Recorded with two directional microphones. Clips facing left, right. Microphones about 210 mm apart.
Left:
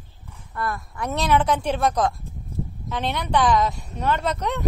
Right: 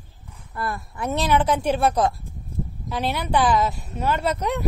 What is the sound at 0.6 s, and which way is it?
Speech, 25° right (ahead or behind).